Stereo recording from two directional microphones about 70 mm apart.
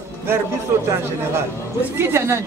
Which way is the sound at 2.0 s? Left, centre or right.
Right.